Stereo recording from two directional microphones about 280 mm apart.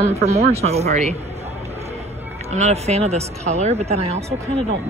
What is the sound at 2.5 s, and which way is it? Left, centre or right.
Speech, right.